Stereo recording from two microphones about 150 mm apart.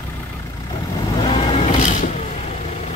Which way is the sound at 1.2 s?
40° left (ahead or behind).